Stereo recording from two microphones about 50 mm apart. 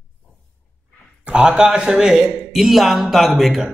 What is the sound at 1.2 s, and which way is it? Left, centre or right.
Speech, centre.